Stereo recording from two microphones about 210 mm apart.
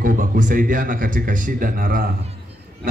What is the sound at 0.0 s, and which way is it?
Speech, 40° right (ahead or behind).